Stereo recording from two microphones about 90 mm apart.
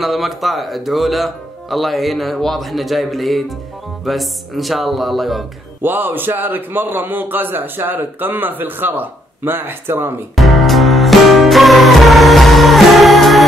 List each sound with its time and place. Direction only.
0.0 s speech: centre (ahead or behind)
5.8 s a man's voice: 20° right (ahead or behind)
10.3 s music: centre (ahead or behind)